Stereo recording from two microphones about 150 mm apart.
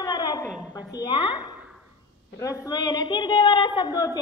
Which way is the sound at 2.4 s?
25° left (ahead or behind).